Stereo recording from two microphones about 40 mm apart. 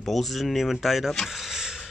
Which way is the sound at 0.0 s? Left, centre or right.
Centre.